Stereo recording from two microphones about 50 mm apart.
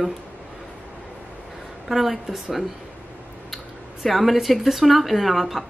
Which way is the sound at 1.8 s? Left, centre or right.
Centre.